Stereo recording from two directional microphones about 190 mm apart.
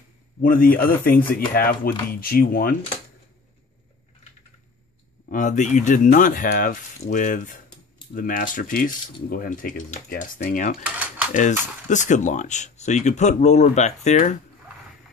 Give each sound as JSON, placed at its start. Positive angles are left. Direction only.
{"t": 0.4, "sound": "speech", "side_deg": 50}
{"t": 5.3, "sound": "speech", "side_deg": 40}